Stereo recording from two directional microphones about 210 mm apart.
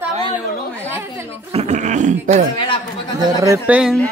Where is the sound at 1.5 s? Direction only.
35° right (ahead or behind).